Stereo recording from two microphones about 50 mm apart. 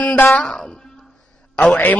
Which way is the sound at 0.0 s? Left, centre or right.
Left.